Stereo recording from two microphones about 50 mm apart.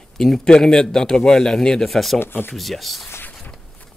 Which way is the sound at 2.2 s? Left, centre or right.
Left.